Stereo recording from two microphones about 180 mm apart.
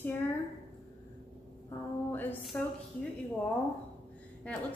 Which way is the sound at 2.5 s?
10° left (ahead or behind).